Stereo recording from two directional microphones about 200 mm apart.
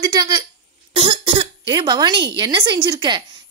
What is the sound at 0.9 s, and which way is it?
A woman's voice, 25° right (ahead or behind).